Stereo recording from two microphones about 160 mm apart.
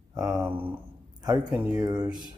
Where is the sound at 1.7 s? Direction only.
25° right (ahead or behind).